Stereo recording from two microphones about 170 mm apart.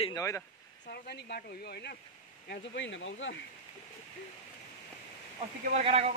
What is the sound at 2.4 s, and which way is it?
Speech, 80° left.